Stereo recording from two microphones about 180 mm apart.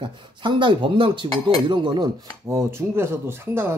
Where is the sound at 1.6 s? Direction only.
25° right (ahead or behind).